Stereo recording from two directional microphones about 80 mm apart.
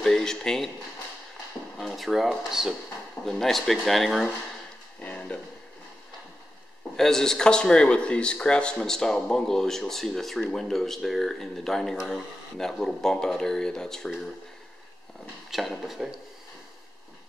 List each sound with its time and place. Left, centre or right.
0.0 s speech: centre
1.8 s a man's voice: centre
5.0 s a sound: centre
7.0 s a man's voice: centre
15.5 s a man's voice: centre